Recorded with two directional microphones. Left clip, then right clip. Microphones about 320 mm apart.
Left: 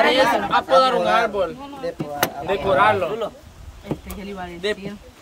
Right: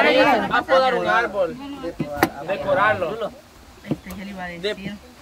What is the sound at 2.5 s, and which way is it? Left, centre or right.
Speech, left.